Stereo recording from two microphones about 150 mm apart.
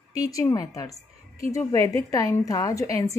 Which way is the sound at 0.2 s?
25° left (ahead or behind).